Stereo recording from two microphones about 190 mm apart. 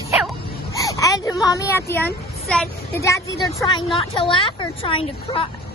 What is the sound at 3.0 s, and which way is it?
Speech, 15° left (ahead or behind).